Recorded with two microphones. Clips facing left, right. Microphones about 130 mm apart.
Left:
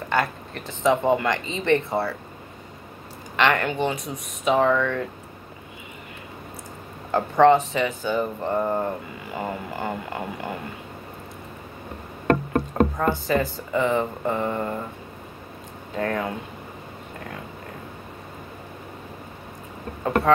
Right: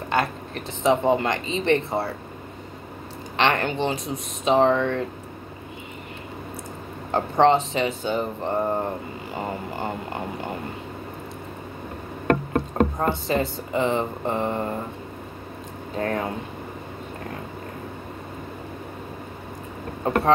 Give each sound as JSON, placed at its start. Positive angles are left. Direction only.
{"t": 0.1, "sound": "a sound", "side_deg": -20}
{"t": 0.8, "sound": "speech", "side_deg": -25}
{"t": 3.3, "sound": "speech", "side_deg": -25}
{"t": 7.1, "sound": "speech", "side_deg": -25}
{"t": 13.1, "sound": "speech", "side_deg": -20}
{"t": 16.0, "sound": "speech", "side_deg": -30}